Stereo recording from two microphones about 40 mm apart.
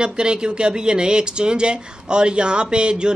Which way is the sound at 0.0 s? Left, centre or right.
Right.